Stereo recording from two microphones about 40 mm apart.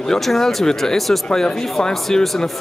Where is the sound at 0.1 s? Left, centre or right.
Centre.